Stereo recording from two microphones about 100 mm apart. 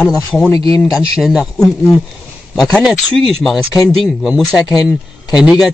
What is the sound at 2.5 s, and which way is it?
Speech, 5° left (ahead or behind).